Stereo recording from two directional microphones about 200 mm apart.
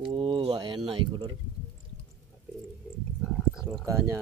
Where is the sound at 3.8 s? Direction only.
15° right (ahead or behind).